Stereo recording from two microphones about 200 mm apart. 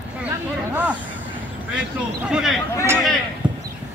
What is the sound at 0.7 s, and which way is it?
Speech, 5° right (ahead or behind).